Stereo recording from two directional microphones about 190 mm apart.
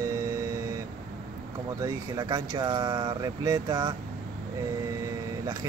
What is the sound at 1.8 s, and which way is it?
Speech, 20° right (ahead or behind).